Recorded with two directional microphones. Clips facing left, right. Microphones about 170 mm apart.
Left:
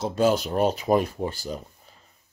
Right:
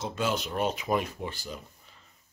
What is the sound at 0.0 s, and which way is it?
Speech, 40° left (ahead or behind).